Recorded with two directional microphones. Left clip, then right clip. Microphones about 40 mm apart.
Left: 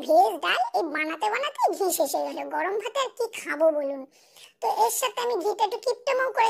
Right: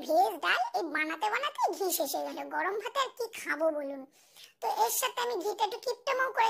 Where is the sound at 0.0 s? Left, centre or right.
Left.